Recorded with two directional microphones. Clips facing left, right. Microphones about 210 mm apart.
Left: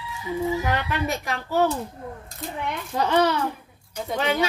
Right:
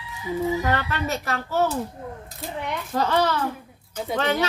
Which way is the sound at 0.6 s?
15° left (ahead or behind).